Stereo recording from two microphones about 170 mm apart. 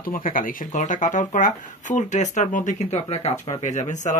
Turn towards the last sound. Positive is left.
turn(degrees=45)  # may be behind; listen again after turning